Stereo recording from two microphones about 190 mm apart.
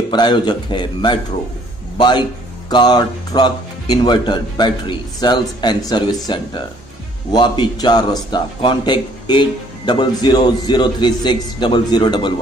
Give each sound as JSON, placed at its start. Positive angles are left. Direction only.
{"t": 0.1, "sound": "a man's voice", "side_deg": 25}